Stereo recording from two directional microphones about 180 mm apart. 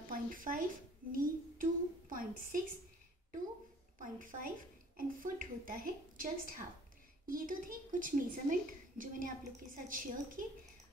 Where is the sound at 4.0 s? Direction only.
50° right (ahead or behind).